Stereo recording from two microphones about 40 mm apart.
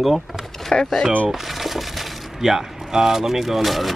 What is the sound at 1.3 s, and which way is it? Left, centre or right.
Speech, centre.